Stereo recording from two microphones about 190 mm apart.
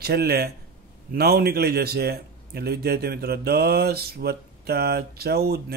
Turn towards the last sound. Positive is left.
turn(degrees=-55)  # may be behind; listen again after turning